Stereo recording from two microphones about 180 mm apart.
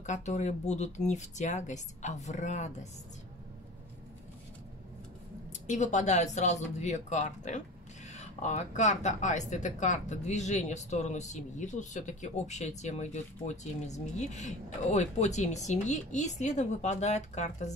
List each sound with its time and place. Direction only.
0.0 s speech: 40° left (ahead or behind)
5.7 s speech: 45° left (ahead or behind)